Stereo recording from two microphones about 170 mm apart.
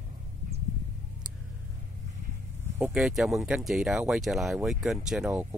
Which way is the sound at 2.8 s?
Centre (ahead or behind).